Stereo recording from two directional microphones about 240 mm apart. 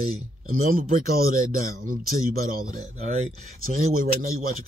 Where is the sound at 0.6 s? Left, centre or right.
Right.